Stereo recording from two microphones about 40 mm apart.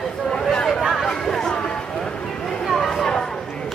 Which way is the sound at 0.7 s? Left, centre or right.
Centre.